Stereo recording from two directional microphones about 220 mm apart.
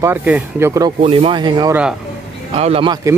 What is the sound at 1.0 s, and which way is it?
Speech, 25° right (ahead or behind).